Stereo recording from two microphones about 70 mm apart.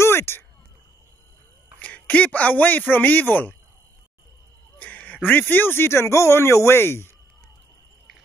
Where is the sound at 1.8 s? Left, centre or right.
Left.